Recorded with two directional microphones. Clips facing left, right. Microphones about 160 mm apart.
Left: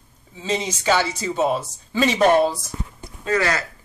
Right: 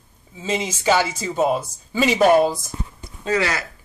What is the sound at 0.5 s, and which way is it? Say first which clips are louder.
Speech: right 1 dB; 5° right (ahead or behind).